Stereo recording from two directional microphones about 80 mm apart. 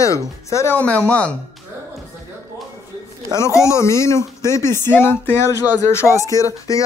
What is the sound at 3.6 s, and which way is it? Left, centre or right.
Speech, left.